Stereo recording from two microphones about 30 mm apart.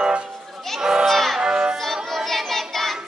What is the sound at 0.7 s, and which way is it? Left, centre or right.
Children playing, centre.